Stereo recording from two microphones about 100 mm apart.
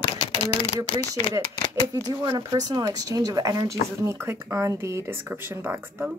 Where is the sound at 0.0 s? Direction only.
65° left (ahead or behind).